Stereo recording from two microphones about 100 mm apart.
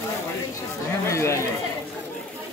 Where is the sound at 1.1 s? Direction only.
30° left (ahead or behind).